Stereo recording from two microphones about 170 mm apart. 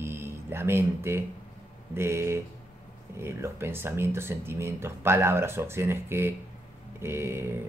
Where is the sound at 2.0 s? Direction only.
15° right (ahead or behind).